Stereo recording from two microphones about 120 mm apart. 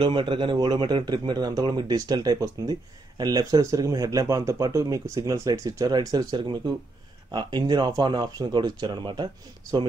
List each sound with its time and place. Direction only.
0.0 s speech: 45° right (ahead or behind)